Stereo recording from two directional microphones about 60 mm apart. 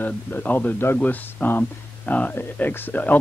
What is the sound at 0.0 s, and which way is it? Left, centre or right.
Speech, left.